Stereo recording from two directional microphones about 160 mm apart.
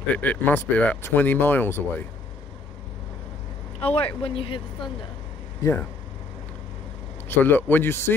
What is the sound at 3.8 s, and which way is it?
Speech, 35° left (ahead or behind).